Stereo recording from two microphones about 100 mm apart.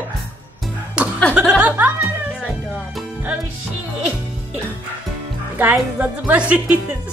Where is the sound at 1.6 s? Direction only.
15° right (ahead or behind).